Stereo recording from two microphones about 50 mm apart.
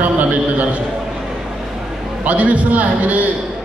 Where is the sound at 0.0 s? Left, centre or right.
Right.